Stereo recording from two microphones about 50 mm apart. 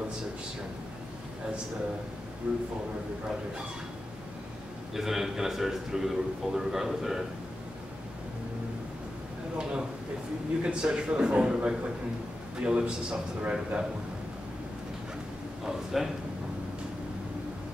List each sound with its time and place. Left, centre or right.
2.4 s a man's voice: right
4.9 s a man's voice: centre
9.6 s a man's voice: centre
15.6 s a man's voice: centre